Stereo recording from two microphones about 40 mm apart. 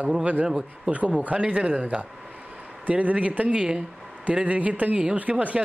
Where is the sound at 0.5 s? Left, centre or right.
Centre.